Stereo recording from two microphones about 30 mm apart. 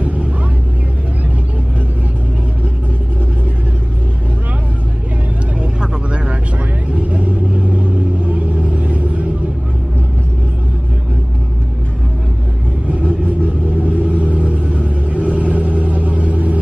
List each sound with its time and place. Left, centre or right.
0.0 s vehicle: right
6.9 s vehicle: right
13.8 s vehicle: right